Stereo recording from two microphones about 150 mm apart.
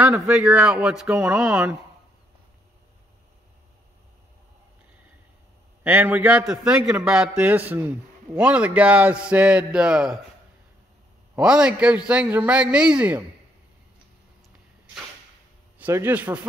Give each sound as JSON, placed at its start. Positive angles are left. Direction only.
{"t": 0.0, "sound": "a man's voice", "side_deg": -10}
{"t": 5.9, "sound": "a man's voice", "side_deg": -15}
{"t": 11.3, "sound": "a man's voice", "side_deg": -5}
{"t": 15.8, "sound": "a man's voice", "side_deg": -15}